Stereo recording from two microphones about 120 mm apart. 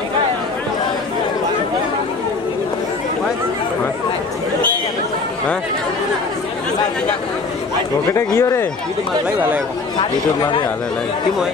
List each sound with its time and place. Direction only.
8.1 s speech: 25° left (ahead or behind)